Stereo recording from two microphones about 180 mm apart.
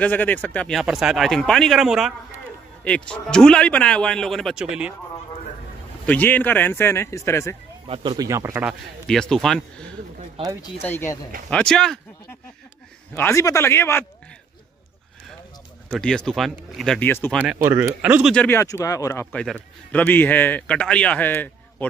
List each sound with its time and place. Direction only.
0.0 s speech: 10° left (ahead or behind)
6.0 s a man's voice: 10° left (ahead or behind)
7.8 s speech: 30° right (ahead or behind)
8.6 s a man's voice: 5° left (ahead or behind)
13.1 s a man's voice: 15° left (ahead or behind)
15.9 s speech: 5° left (ahead or behind)
17.6 s speech: 10° right (ahead or behind)
18.3 s a man's voice: 10° left (ahead or behind)
19.3 s a man's voice: 5° left (ahead or behind)